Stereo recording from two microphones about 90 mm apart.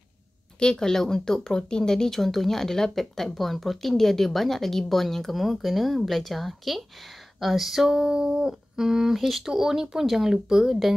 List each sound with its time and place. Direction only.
0.6 s speech: 5° left (ahead or behind)